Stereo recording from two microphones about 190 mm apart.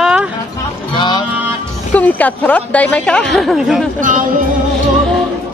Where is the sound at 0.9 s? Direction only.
25° left (ahead or behind).